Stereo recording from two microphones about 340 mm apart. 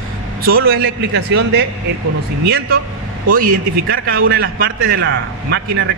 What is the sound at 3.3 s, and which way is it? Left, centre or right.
A man's voice, right.